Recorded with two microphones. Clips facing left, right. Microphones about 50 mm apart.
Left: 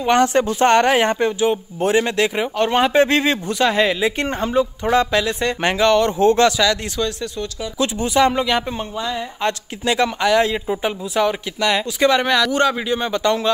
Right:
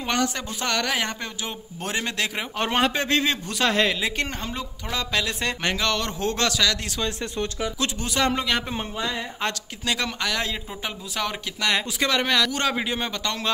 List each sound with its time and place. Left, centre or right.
0.1 s speech: left
1.4 s speech: left
2.5 s a woman's voice: centre
2.9 s a man's voice: left
3.4 s speech: centre
4.2 s a man's voice: left
5.1 s speech: centre
5.6 s speech: centre
7.8 s speech: centre
8.7 s a woman's voice: centre
9.5 s speech: centre
11.1 s speech: centre
12.7 s a woman's voice: centre
13.1 s speech: centre